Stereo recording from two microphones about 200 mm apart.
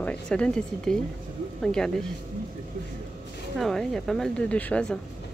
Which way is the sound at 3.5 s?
Centre (ahead or behind).